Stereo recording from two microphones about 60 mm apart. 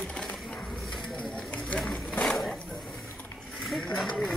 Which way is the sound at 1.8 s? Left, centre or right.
Centre.